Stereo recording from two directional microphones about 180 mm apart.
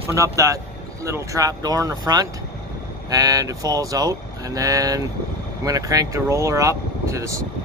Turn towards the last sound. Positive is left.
turn(degrees=-15)  # may be behind; listen again after turning